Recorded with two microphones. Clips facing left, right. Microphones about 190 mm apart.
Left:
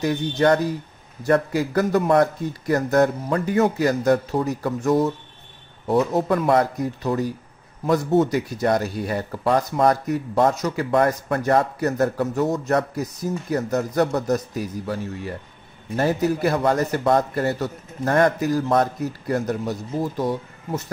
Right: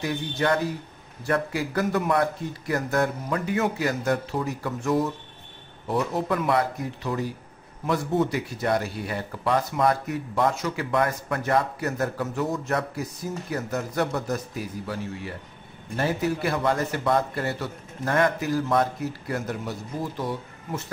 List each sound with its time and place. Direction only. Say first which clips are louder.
0.0 s speech: left 7 dB; 40° left (ahead or behind)